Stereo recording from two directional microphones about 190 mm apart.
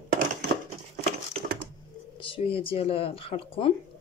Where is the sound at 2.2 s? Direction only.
30° left (ahead or behind).